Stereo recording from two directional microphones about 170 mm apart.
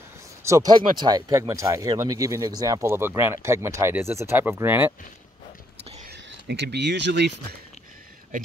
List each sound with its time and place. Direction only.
0.4 s speech: 20° right (ahead or behind)
6.0 s speech: 80° right